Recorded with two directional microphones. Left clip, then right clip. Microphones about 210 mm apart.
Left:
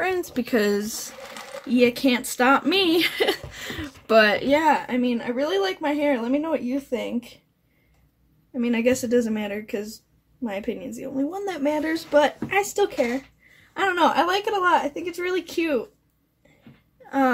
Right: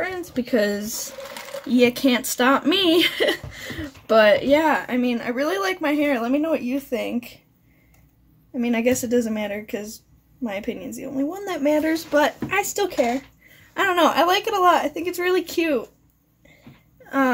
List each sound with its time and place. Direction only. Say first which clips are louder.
0.0 s speech: left 2 dB; 25° left (ahead or behind); by 1.0 s centre (ahead or behind)
1.7 s speech: right 2 dB; 10° right (ahead or behind)
8.5 s a woman's voice: right 1 dB; 5° right (ahead or behind)